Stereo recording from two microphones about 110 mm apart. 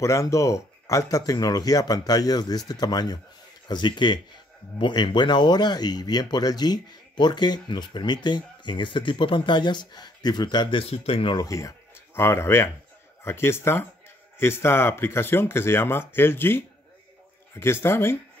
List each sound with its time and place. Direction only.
0.0 s speech: 30° left (ahead or behind)
10.8 s speech: 60° left (ahead or behind)
11.3 s speech: 30° left (ahead or behind)